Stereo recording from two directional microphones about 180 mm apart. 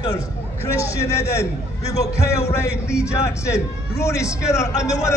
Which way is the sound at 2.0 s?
15° left (ahead or behind).